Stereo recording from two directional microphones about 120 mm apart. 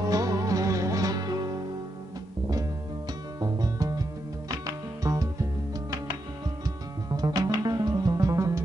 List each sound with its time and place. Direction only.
0.1 s music: 30° right (ahead or behind)
3.3 s music: 30° right (ahead or behind)
7.1 s music: 35° right (ahead or behind)